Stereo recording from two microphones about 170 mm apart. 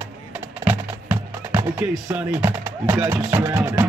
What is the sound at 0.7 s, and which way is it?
Speech, 10° right (ahead or behind).